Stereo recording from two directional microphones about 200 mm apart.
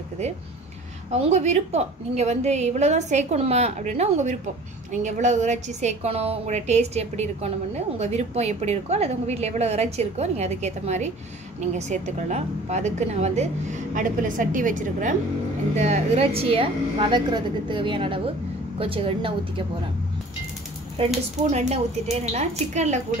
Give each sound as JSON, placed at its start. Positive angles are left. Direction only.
{"t": 1.1, "sound": "a woman's voice", "side_deg": -35}
{"t": 21.0, "sound": "a woman's voice", "side_deg": -35}